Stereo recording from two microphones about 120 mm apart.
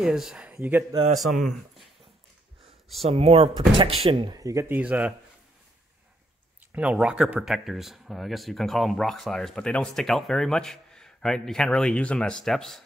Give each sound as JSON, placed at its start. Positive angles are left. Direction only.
{"t": 0.0, "sound": "speech", "side_deg": -5}
{"t": 1.2, "sound": "speech", "side_deg": 0}
{"t": 3.0, "sound": "speech", "side_deg": -60}
{"t": 4.3, "sound": "speech", "side_deg": -30}
{"t": 4.6, "sound": "speech", "side_deg": -15}
{"t": 6.7, "sound": "speech", "side_deg": -10}